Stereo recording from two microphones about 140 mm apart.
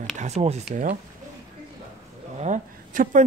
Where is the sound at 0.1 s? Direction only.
55° right (ahead or behind).